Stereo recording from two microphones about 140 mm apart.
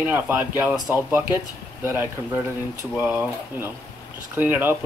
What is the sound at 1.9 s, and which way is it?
Speech, 15° right (ahead or behind).